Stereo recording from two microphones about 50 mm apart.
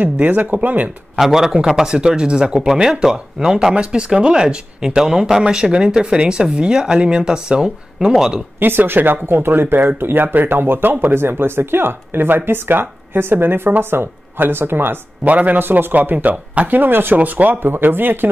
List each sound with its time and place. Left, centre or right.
0.0 s a man's voice: right
1.1 s speech: centre
8.5 s speech: right
11.1 s speech: right
15.2 s a man's voice: right